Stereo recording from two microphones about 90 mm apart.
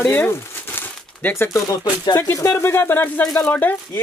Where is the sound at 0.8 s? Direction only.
25° left (ahead or behind).